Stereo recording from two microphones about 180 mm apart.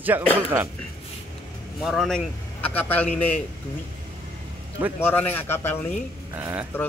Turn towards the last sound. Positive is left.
turn(degrees=-10)  # may be behind; listen again after turning